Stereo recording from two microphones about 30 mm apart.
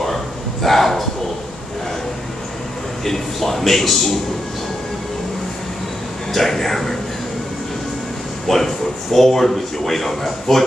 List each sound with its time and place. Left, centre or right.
0.0 s a sound: centre
3.1 s a man's voice: centre
6.3 s speech: centre
8.5 s speech: centre